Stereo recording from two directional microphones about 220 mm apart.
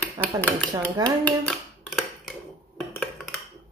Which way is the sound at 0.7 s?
20° right (ahead or behind).